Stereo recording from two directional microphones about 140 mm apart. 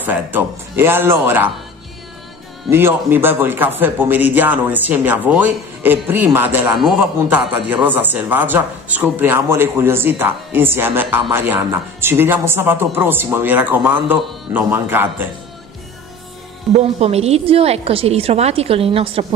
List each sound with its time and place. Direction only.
0.0 s a man's voice: 15° right (ahead or behind)
2.7 s a man's voice: 15° right (ahead or behind)
17.0 s a woman's voice: 50° right (ahead or behind)